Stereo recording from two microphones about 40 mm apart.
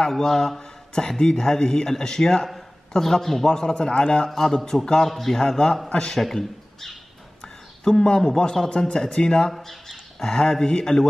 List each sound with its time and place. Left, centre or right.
0.1 s speech: centre
6.1 s speech: centre
7.4 s a sound: centre
8.2 s speech: centre
9.5 s speech: centre